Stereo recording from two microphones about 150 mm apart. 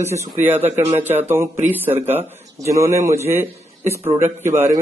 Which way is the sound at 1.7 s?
15° right (ahead or behind).